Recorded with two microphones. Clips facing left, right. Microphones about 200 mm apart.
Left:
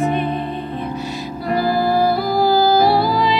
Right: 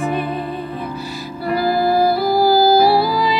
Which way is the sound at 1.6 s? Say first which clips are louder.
Right 1 dB; 45° left (ahead or behind).